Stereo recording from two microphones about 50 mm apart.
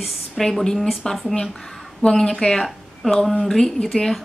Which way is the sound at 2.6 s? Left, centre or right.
Centre.